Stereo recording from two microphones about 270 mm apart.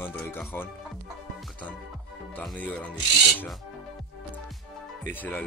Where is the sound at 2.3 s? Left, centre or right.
Centre.